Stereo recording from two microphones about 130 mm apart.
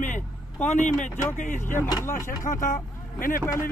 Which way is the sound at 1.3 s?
70° left (ahead or behind).